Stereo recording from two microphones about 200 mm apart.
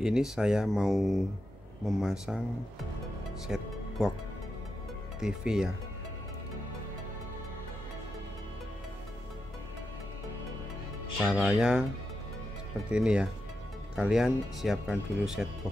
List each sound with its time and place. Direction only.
0.0 s speech: 5° right (ahead or behind)
3.4 s speech: 5° right (ahead or behind)
5.2 s speech: 5° right (ahead or behind)
11.2 s speech: centre (ahead or behind)
12.9 s speech: 5° right (ahead or behind)